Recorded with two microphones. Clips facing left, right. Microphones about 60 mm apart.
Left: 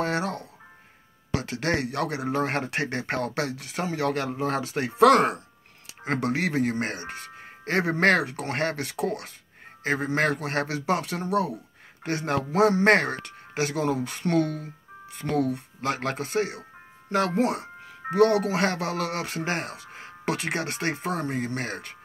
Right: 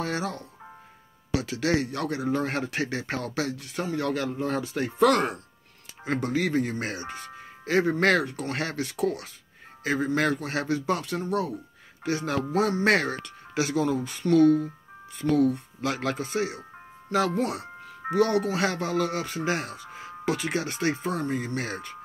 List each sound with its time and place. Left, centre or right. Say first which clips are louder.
0.0 s music: left 3 dB; left
1.3 s speech: right 1 dB; left
6.1 s speech: even; left
8.3 s speech: left 3 dB; left
10.3 s speech: even; left
12.0 s speech: even; left
12.8 s speech: left 3 dB; left
17.4 s speech: left 3 dB; left